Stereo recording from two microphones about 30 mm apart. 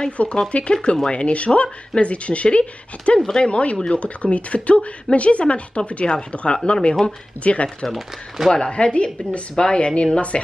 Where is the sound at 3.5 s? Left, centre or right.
Left.